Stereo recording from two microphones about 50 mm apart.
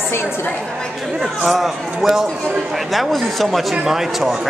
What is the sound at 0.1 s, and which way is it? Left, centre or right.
Speech, left.